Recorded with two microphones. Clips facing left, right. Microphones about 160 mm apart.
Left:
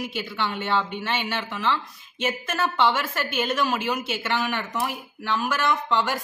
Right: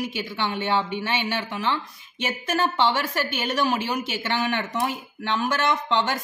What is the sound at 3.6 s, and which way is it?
Speech, 15° right (ahead or behind).